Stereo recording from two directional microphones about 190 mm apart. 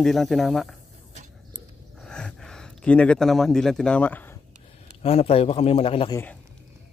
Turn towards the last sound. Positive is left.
turn(degrees=30)  # may be behind; listen again after turning